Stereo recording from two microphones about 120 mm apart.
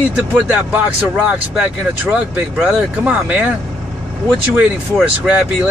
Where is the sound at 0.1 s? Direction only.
10° right (ahead or behind).